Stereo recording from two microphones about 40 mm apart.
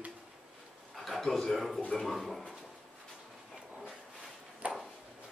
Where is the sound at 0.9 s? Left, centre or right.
Centre.